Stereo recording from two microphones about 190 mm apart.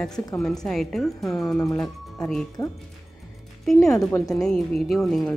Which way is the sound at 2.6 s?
20° left (ahead or behind).